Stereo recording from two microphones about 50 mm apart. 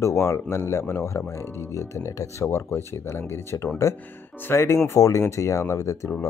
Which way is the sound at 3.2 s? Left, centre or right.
Left.